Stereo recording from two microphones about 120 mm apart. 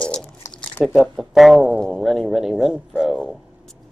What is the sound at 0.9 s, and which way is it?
Speech, 5° right (ahead or behind).